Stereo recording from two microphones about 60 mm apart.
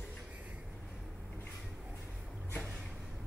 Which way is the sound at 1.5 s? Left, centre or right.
Centre.